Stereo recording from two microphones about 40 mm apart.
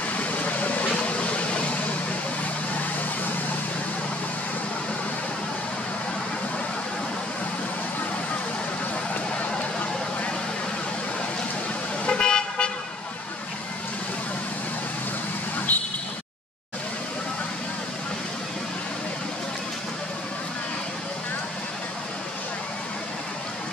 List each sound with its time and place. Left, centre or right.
0.1 s vehicle: left
12.1 s car: left
15.7 s vehicle: left